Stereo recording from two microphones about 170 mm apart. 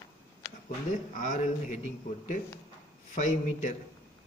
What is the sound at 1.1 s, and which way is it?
Speech, 50° left (ahead or behind).